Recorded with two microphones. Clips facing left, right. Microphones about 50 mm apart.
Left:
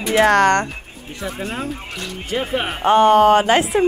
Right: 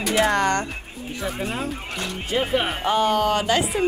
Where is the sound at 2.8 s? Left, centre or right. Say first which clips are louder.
Left 11 dB; left.